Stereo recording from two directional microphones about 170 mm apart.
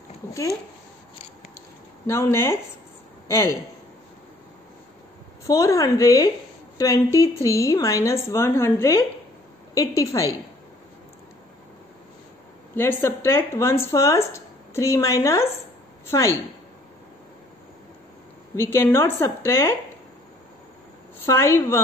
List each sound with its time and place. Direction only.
2.0 s a man's voice: 15° left (ahead or behind)
5.5 s a woman's voice: 20° left (ahead or behind)
12.7 s speech: 15° left (ahead or behind)
18.6 s speech: 15° left (ahead or behind)
21.3 s speech: 15° left (ahead or behind)